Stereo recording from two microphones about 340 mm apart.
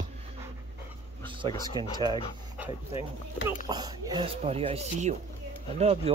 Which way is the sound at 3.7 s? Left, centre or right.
Centre.